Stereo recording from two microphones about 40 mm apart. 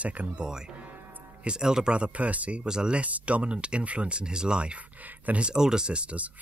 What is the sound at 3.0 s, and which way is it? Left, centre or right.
Speech, right.